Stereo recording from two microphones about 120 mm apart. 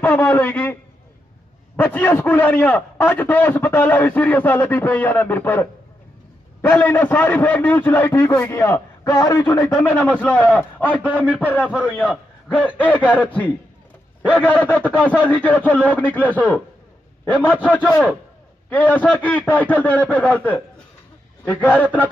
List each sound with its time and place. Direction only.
0.0 s a man's voice: 15° left (ahead or behind)
1.8 s a man's voice: 15° left (ahead or behind)
11.2 s speech: 15° right (ahead or behind)
11.8 s a man's voice: 15° left (ahead or behind)
17.2 s a sound: 15° left (ahead or behind)
18.7 s a man's voice: 15° left (ahead or behind)